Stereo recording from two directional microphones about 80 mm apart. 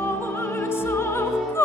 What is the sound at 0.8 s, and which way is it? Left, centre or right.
Music, left.